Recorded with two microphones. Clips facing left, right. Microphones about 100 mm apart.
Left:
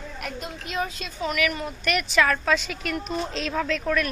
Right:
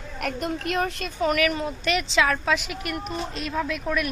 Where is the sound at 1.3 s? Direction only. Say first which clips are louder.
Right 3 dB; 30° right (ahead or behind).